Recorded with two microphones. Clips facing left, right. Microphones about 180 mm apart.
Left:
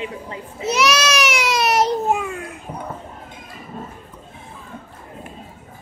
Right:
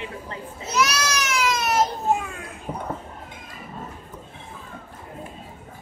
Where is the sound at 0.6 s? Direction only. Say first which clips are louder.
Left 5 dB; 85° left.